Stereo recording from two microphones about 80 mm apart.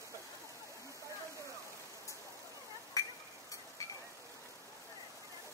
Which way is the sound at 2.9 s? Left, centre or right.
Left.